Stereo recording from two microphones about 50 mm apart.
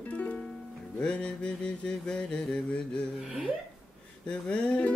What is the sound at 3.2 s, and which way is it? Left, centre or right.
Speech, centre.